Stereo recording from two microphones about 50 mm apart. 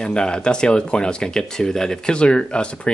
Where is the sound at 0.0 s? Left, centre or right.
Centre.